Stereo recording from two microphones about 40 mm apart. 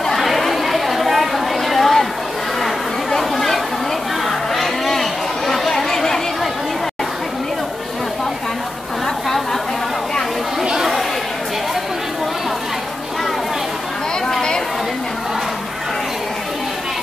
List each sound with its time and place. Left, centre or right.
0.0 s chatter: centre
4.3 s crowd: centre
5.5 s chatter: centre
10.6 s chatter: centre